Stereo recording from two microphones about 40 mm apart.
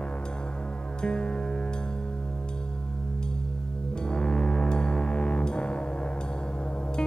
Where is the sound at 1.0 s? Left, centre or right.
Left.